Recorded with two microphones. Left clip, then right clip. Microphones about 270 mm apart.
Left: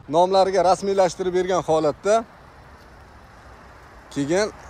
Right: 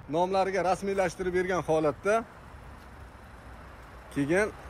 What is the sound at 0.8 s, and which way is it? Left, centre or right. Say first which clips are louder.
Speech: left 9 dB; centre.